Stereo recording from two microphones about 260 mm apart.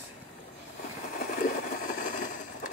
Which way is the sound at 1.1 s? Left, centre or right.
Left.